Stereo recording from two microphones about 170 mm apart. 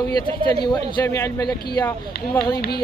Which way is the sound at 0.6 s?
25° left (ahead or behind).